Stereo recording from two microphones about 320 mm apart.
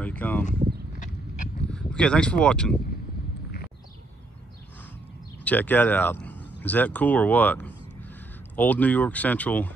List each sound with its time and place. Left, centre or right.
0.0 s a sound: centre
0.9 s horse: left
1.7 s speech: centre
5.4 s speech: centre